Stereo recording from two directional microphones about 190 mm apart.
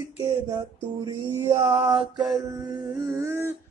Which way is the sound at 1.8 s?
25° right (ahead or behind).